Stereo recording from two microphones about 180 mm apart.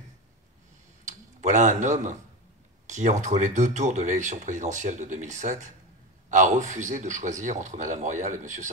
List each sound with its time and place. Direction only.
1.0 s speech: 45° right (ahead or behind)